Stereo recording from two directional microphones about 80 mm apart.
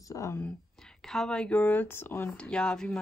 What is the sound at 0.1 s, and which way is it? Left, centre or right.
Speech, left.